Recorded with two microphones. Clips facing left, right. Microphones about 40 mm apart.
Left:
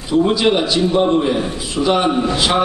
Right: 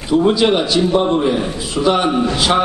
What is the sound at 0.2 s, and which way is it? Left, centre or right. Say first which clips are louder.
A man's voice: left 1 dB; centre.